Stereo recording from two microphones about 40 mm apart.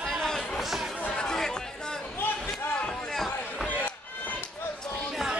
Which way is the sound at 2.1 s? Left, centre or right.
Left.